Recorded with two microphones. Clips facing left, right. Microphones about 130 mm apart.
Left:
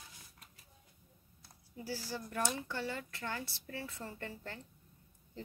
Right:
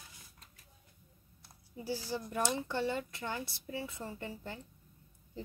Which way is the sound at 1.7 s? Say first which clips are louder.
Right 4 dB; 20° right (ahead or behind).